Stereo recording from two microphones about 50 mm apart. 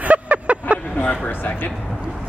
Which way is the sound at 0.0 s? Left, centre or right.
Right.